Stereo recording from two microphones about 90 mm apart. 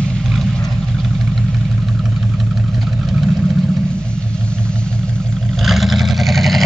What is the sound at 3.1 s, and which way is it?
Vehicle, 10° right (ahead or behind).